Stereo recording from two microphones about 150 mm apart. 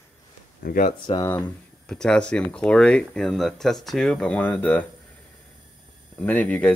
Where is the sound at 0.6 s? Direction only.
70° left (ahead or behind).